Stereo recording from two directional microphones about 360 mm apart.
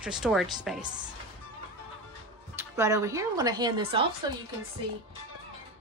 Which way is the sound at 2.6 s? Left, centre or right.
Centre.